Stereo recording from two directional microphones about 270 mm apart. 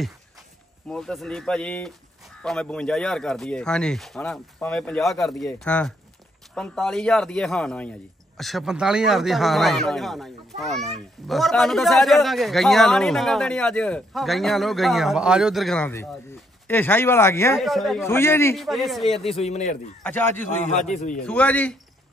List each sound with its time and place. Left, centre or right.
0.8 s a man's voice: centre
19.4 s a man's voice: left
20.0 s a man's voice: centre
20.6 s a man's voice: left
21.3 s a man's voice: centre